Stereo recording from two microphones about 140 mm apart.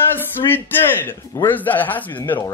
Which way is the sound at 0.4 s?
30° left (ahead or behind).